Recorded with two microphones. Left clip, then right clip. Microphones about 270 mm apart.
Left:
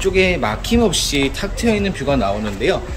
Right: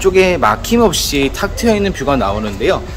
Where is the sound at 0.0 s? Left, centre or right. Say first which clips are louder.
Right 5 dB; centre.